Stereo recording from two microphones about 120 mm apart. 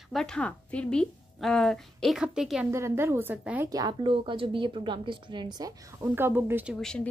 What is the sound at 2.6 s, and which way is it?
A woman's voice, 20° right (ahead or behind).